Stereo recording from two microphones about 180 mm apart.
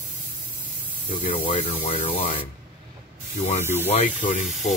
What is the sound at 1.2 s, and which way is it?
Speech, 30° left (ahead or behind).